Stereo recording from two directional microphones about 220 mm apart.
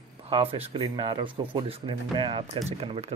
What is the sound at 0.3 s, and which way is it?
Speech, 25° right (ahead or behind).